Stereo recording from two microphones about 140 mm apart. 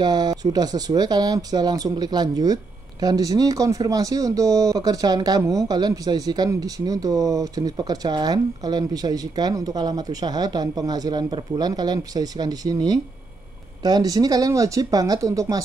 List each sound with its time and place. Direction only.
0.0 s speech: 30° right (ahead or behind)